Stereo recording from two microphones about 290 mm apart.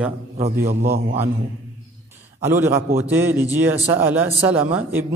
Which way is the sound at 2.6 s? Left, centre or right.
Centre.